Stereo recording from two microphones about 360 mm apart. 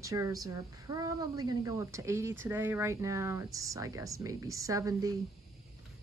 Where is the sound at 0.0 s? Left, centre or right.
Centre.